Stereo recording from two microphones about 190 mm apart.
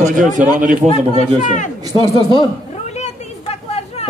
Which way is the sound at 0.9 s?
40° left (ahead or behind).